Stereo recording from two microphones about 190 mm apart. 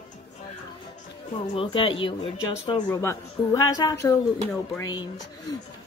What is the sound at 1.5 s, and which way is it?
Speech, 25° left (ahead or behind).